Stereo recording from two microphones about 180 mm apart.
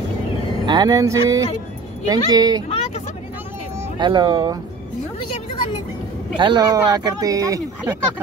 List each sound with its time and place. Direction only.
0.7 s speech: 25° right (ahead or behind)
4.0 s speech: 25° right (ahead or behind)
6.3 s speech: 25° right (ahead or behind)